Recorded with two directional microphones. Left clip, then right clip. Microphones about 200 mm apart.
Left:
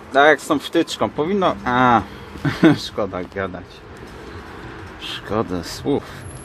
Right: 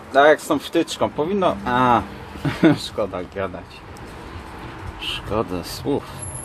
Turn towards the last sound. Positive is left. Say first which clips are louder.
# left 2 dB
turn(degrees=30)  # may be behind; listen again after turning